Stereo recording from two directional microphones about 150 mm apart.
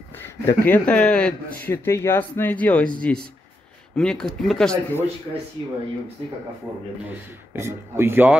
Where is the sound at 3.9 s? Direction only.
5° left (ahead or behind).